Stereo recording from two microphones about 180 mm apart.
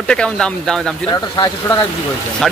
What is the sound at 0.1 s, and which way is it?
Speech, 5° left (ahead or behind).